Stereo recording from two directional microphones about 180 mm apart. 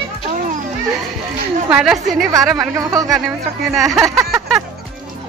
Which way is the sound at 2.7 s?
20° right (ahead or behind).